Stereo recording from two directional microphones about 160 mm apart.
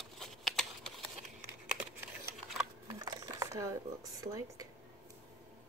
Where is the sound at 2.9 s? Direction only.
25° right (ahead or behind).